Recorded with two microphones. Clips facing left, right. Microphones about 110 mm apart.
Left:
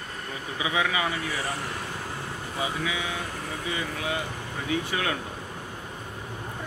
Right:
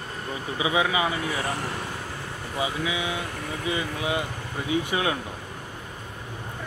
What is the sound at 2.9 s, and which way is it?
Speech, 15° right (ahead or behind).